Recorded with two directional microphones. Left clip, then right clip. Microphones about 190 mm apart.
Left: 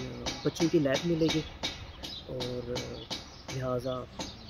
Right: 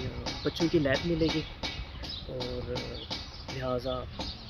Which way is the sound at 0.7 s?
20° left (ahead or behind).